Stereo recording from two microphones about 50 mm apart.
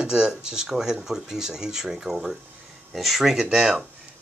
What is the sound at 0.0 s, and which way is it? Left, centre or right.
Speech, centre.